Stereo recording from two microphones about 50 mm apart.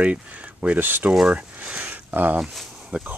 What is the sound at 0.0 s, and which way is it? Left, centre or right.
Speech, right.